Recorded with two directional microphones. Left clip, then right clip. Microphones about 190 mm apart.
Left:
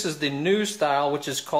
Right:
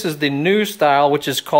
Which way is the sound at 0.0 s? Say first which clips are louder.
Right 7 dB; 50° right (ahead or behind).